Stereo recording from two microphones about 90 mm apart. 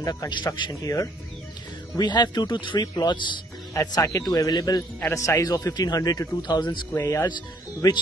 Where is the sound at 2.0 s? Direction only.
50° left (ahead or behind).